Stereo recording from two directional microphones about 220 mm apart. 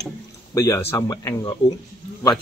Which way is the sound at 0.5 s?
15° left (ahead or behind).